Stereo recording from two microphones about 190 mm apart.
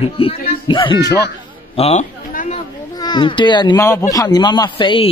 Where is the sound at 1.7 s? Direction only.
35° left (ahead or behind).